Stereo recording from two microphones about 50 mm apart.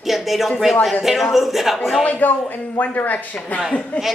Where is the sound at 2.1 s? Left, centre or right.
Left.